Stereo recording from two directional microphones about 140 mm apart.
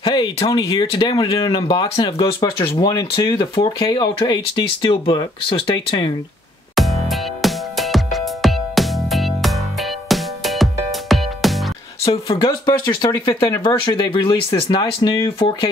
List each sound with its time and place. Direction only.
0.0 s a sound: 35° left (ahead or behind)
0.7 s speech: 35° left (ahead or behind)
6.7 s music: centre (ahead or behind)
12.4 s speech: 30° left (ahead or behind)